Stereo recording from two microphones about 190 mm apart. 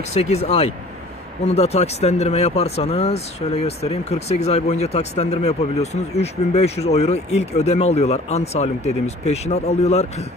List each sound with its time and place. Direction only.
0.1 s speech: 35° left (ahead or behind)